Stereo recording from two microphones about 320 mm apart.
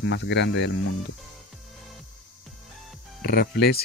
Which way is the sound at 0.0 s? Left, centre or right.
Left.